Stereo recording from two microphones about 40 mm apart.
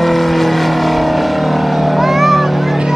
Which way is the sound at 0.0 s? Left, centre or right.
Centre.